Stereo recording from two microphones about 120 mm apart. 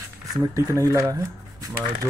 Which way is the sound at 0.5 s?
25° right (ahead or behind).